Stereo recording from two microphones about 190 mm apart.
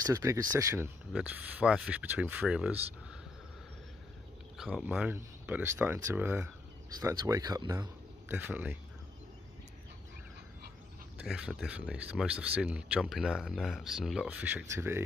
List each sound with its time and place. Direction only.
0.0 s speech: 15° right (ahead or behind)
4.6 s speech: 5° right (ahead or behind)
8.4 s speech: 10° right (ahead or behind)
11.1 s speech: 5° right (ahead or behind)